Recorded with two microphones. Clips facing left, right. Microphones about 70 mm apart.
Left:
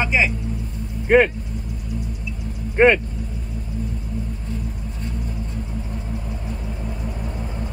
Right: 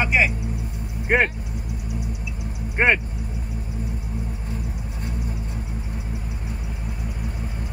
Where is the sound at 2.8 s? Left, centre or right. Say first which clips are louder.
Left 5 dB; centre.